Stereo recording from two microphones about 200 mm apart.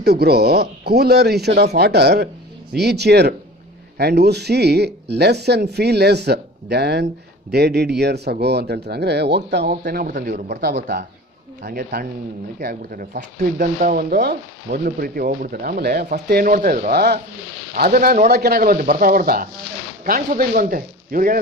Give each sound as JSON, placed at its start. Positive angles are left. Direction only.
{"t": 0.0, "sound": "speech", "side_deg": -55}